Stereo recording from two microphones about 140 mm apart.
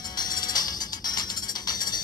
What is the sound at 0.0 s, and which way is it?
Music, 30° left (ahead or behind).